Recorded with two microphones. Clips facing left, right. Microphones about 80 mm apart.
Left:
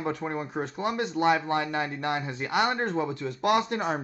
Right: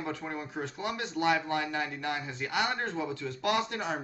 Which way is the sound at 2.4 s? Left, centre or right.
Left.